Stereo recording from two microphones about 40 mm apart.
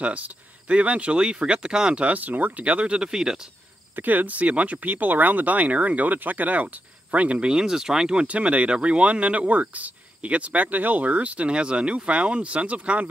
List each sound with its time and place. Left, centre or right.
0.7 s speech: right
2.0 s speech: right
2.6 s speech: right
3.0 s speech: centre
3.9 s speech: right
7.3 s speech: centre
8.3 s speech: right